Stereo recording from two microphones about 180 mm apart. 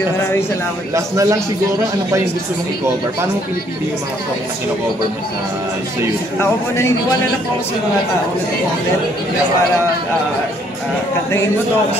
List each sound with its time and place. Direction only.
0.9 s a man's voice: 20° right (ahead or behind)